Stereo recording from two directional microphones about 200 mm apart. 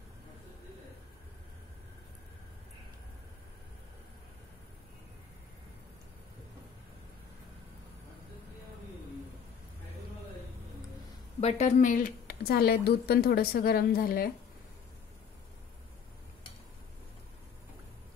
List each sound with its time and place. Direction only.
11.4 s a woman's voice: 35° left (ahead or behind)